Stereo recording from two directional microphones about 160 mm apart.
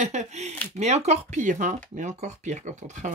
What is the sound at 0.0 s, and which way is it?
Gasp, 45° right (ahead or behind).